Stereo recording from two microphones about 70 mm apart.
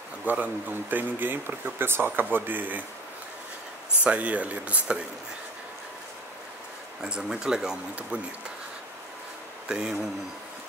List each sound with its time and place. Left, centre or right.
0.2 s speech: right
4.0 s speech: centre
7.0 s speech: centre
9.7 s speech: centre